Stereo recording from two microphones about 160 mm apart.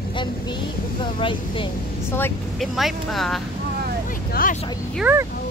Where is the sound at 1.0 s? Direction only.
30° left (ahead or behind).